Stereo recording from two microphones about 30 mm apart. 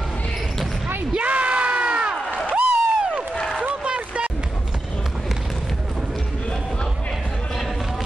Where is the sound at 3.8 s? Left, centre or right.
Right.